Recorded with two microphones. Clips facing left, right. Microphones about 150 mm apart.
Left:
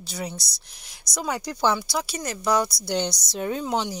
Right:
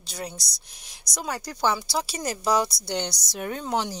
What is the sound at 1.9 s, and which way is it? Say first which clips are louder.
A woman's voice: even; 30° right (ahead or behind).